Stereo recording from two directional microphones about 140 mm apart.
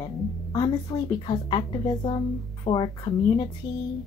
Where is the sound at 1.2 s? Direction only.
35° left (ahead or behind).